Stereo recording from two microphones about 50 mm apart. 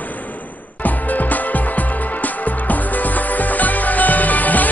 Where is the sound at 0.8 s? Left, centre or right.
Left.